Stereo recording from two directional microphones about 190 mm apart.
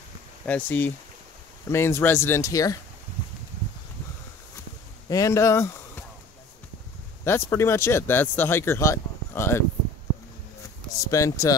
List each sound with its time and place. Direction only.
0.5 s speech: 10° left (ahead or behind)
5.1 s speech: 15° left (ahead or behind)
7.2 s speech: 15° left (ahead or behind)
10.9 s speech: 20° left (ahead or behind)